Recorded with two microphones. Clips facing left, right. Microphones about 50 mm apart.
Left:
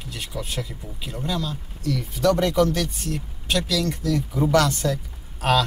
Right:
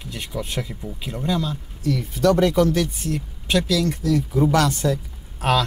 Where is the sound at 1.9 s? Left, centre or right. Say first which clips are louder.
Right 2 dB; centre.